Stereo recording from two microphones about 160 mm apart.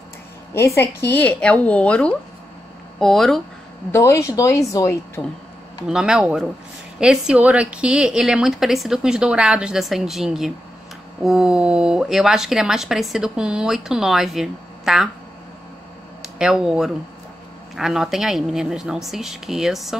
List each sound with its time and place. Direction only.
0.6 s a woman's voice: 15° left (ahead or behind)
3.9 s a woman's voice: 20° left (ahead or behind)
5.9 s speech: 5° right (ahead or behind)
16.2 s speech: 5° right (ahead or behind)